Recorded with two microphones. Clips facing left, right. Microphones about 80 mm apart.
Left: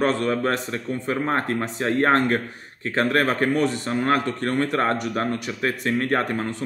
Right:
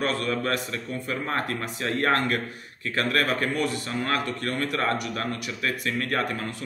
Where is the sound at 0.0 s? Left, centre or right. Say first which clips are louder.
Left 5 dB; left.